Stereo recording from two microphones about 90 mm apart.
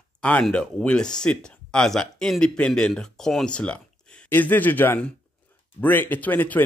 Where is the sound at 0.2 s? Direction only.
15° left (ahead or behind).